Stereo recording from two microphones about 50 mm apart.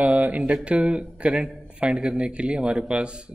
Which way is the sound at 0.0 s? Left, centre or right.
Right.